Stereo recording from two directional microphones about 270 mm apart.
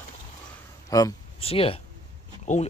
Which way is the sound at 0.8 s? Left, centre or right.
Centre.